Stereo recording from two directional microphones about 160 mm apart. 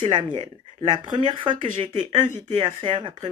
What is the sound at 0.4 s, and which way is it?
Speech, 30° right (ahead or behind).